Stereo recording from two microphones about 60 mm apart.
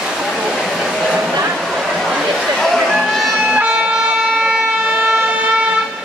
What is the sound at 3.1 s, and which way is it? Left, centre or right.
Music, centre.